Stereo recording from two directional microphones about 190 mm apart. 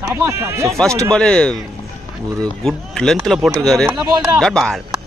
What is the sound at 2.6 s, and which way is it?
Speech, 5° left (ahead or behind).